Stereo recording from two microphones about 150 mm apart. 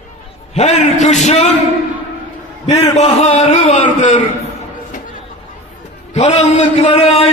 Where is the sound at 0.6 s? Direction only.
50° left (ahead or behind).